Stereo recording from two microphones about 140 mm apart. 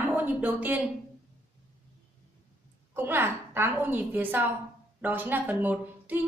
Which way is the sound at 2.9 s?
15° right (ahead or behind).